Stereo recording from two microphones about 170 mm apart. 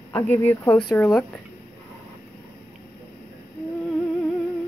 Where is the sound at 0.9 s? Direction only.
Centre (ahead or behind).